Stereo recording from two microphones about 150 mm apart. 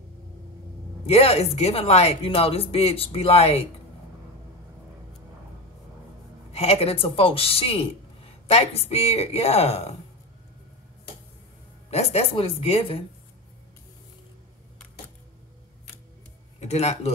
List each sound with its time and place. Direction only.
1.0 s a woman's voice: 40° left (ahead or behind)
6.5 s speech: 40° left (ahead or behind)
11.9 s a woman's voice: 45° left (ahead or behind)
16.5 s speech: 45° left (ahead or behind)